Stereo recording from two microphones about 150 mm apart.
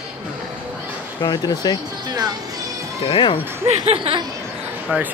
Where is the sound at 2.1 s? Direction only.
25° right (ahead or behind).